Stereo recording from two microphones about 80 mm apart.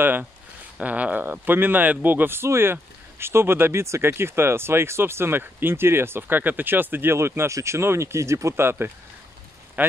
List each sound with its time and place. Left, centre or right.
0.0 s speech: right